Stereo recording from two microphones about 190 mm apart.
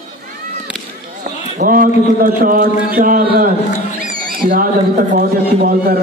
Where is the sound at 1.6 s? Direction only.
50° right (ahead or behind).